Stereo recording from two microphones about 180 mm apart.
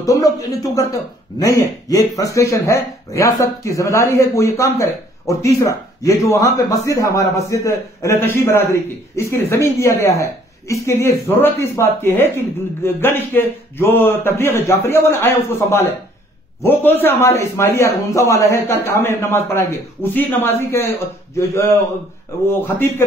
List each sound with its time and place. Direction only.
0.0 s a man's voice: 20° left (ahead or behind)
22.5 s a man's voice: 10° left (ahead or behind)